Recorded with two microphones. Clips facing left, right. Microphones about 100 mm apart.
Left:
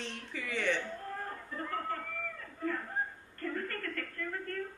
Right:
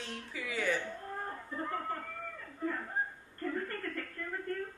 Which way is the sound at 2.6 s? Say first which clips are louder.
Left 1 dB; 15° right (ahead or behind).